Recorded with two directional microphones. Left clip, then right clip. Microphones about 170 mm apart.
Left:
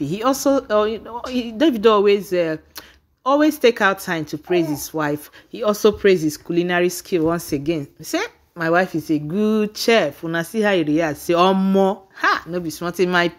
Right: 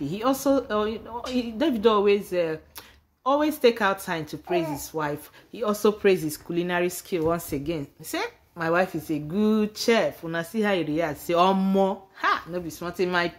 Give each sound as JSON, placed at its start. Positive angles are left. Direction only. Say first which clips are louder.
{"t": 0.0, "sound": "speech", "louder": "left 6 dB", "side_deg": 45}